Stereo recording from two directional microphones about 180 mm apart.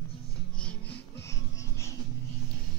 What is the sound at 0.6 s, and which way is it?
Music, 5° left (ahead or behind).